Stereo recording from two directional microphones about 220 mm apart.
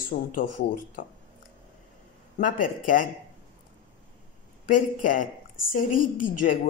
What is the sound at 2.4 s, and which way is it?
Speech, 35° left (ahead or behind).